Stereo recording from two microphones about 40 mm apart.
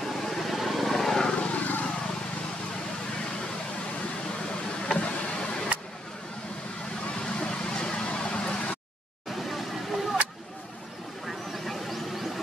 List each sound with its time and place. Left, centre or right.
0.0 s vehicle: centre
1.3 s vehicle: left
1.6 s vehicle: left
5.0 s vehicle: left
7.1 s vehicle: left
9.3 s a sound: centre
11.2 s vehicle: centre